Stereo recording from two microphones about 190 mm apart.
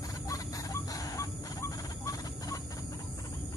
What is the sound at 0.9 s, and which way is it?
Chicken, 15° left (ahead or behind).